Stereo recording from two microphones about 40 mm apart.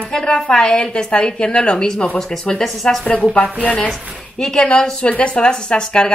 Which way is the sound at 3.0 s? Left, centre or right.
Left.